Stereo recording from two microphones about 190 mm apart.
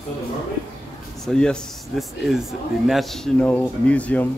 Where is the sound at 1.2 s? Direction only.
5° left (ahead or behind).